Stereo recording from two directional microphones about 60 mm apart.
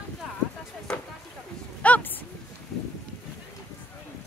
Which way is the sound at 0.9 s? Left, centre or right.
Centre.